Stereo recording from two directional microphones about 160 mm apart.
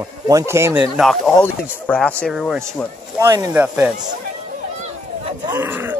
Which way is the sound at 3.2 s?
25° right (ahead or behind).